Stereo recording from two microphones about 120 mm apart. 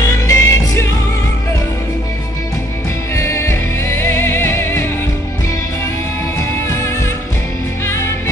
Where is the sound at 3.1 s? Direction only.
25° left (ahead or behind).